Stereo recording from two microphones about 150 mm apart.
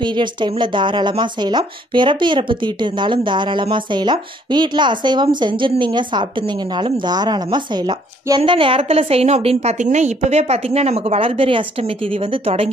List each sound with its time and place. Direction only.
0.0 s speech: 30° right (ahead or behind)